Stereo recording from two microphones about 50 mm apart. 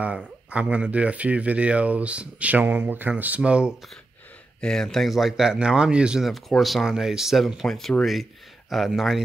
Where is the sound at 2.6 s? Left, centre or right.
Right.